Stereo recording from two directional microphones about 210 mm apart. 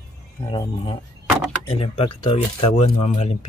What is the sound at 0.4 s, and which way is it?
Speech, 25° left (ahead or behind).